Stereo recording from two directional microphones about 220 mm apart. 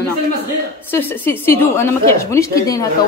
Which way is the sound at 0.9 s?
10° left (ahead or behind).